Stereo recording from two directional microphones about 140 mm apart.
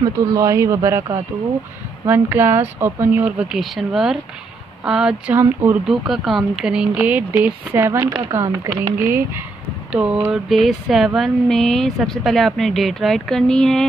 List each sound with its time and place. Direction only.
0.0 s speech: 25° right (ahead or behind)
5.9 s a woman's voice: centre (ahead or behind)